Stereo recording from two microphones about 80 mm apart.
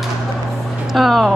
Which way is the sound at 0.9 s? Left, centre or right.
Centre.